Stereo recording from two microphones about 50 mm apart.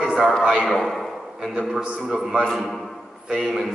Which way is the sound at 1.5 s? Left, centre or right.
Centre.